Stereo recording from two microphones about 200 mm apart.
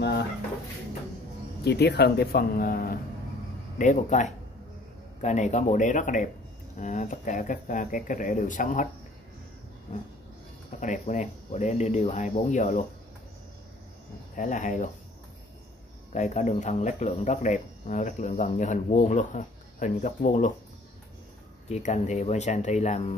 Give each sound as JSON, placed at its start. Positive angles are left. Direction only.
{"t": 1.6, "sound": "speech", "side_deg": 55}
{"t": 10.8, "sound": "speech", "side_deg": 40}
{"t": 14.3, "sound": "speech", "side_deg": 40}
{"t": 16.1, "sound": "speech", "side_deg": 35}
{"t": 21.6, "sound": "speech", "side_deg": 35}